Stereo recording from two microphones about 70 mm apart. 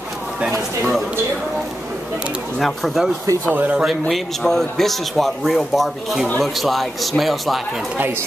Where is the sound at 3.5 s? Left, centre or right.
Right.